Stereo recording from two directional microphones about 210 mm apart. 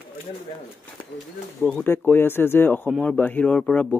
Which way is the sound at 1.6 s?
10° left (ahead or behind).